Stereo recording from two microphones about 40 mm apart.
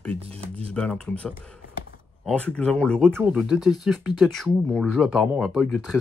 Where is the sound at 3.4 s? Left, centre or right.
Centre.